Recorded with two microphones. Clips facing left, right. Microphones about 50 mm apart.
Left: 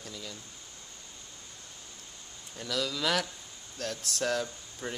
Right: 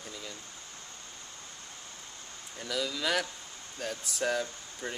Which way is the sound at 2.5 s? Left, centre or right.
Centre.